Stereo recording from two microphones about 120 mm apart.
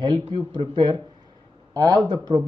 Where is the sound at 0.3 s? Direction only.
40° right (ahead or behind).